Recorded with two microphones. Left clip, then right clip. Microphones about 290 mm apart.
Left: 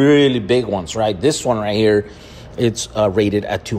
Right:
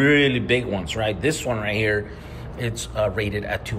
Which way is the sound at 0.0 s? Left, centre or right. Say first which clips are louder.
Left 5 dB; centre.